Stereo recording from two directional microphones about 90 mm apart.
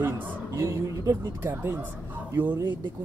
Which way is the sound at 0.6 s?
35° right (ahead or behind).